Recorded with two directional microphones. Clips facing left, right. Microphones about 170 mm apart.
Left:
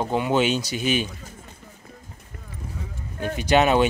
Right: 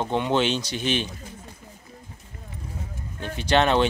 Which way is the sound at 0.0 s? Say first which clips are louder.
Left 1 dB; 5° left (ahead or behind).